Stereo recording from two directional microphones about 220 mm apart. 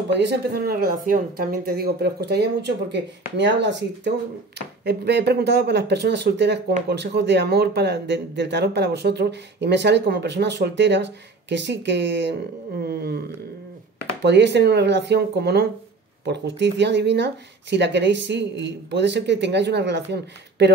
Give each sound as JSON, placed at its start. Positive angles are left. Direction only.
{"t": 0.1, "sound": "speech", "side_deg": -50}
{"t": 14.2, "sound": "speech", "side_deg": -50}